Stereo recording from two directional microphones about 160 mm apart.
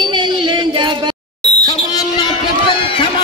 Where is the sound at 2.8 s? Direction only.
35° left (ahead or behind).